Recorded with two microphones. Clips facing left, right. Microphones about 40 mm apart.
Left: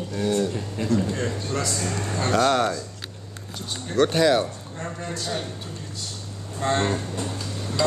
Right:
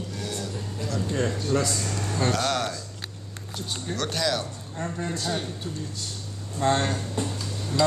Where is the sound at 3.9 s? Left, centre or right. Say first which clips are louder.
Left 9 dB; left.